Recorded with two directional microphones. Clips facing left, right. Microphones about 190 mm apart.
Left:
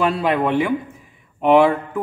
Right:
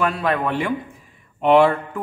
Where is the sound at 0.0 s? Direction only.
25° left (ahead or behind).